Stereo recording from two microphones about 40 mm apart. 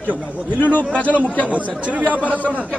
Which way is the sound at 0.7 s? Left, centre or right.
Left.